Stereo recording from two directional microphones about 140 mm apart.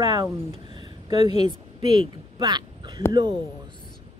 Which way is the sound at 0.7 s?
35° right (ahead or behind).